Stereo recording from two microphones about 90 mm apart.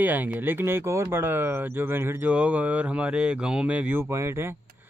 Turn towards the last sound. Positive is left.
turn(degrees=-15)  # may be behind; listen again after turning